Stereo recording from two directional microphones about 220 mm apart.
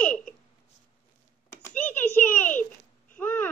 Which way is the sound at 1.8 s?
10° left (ahead or behind).